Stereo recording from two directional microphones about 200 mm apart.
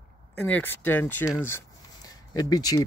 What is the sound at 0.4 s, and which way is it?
Speech, 10° left (ahead or behind).